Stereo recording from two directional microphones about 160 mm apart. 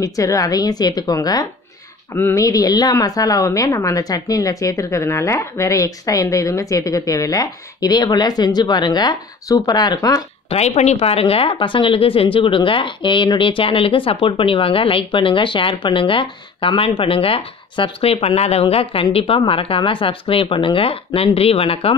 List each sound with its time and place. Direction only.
0.0 s speech: 20° left (ahead or behind)
10.5 s a woman's voice: 40° left (ahead or behind)